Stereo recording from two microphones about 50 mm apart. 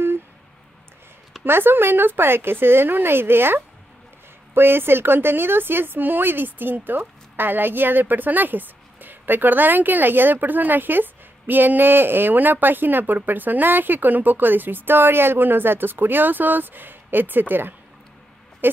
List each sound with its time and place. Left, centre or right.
1.4 s speech: right
18.6 s owl: right